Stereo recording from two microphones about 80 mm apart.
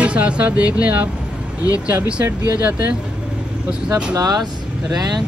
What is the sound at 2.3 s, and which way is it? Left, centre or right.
Speech, right.